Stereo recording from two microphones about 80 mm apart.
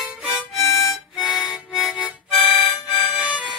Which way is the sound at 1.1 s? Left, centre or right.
Centre.